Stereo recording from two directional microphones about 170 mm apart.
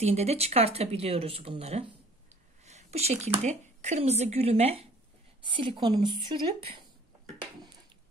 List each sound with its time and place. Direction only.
0.0 s speech: 40° right (ahead or behind)